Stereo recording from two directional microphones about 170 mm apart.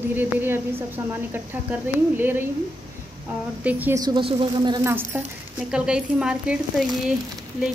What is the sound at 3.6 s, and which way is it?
Speech, 10° right (ahead or behind).